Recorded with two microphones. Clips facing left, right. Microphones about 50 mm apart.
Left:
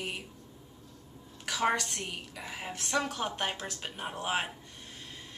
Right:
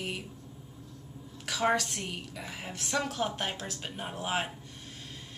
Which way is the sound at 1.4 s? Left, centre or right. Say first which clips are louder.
Right 1 dB; centre.